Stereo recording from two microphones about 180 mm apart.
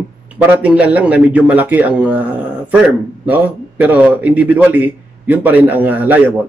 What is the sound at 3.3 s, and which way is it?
Speech, 10° right (ahead or behind).